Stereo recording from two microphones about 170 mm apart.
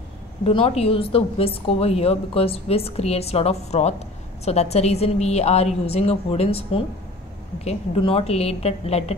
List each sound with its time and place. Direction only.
0.4 s a woman's voice: 35° left (ahead or behind)